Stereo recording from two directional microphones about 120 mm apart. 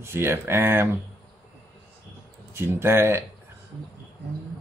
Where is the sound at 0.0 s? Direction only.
20° right (ahead or behind).